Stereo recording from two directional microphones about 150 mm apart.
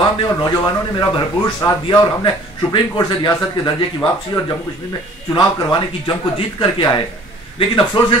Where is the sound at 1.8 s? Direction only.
30° left (ahead or behind).